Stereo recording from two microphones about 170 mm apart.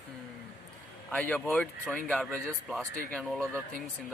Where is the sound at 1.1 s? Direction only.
10° left (ahead or behind).